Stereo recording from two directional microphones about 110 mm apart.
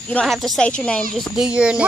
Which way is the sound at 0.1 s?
5° left (ahead or behind).